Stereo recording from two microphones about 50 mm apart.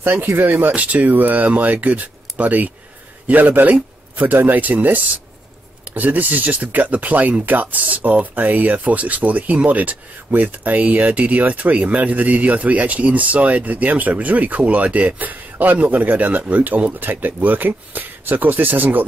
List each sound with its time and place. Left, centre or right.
0.0 s speech: right
0.7 s speech: right